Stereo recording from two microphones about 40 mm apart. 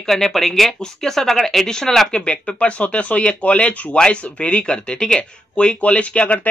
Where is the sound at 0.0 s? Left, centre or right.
Centre.